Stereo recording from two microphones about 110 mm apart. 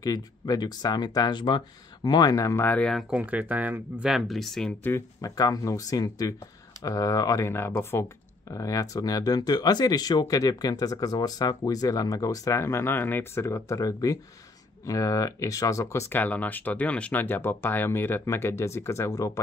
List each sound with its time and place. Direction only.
0.0 s speech: 35° left (ahead or behind)
2.6 s speech: 15° left (ahead or behind)
3.1 s speech: 15° right (ahead or behind)
4.1 s speech: centre (ahead or behind)
5.2 s speech: 35° left (ahead or behind)